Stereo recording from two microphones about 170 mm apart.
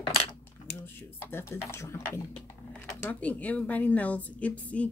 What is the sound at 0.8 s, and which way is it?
Speech, 15° left (ahead or behind).